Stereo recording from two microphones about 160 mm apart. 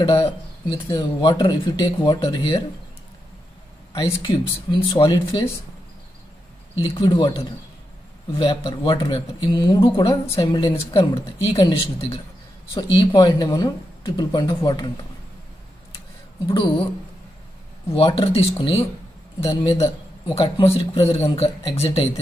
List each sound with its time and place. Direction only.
0.0 s speech: 20° left (ahead or behind)
4.2 s speech: 30° left (ahead or behind)
6.8 s speech: 30° left (ahead or behind)
16.4 s speech: 30° left (ahead or behind)
17.9 s speech: 35° left (ahead or behind)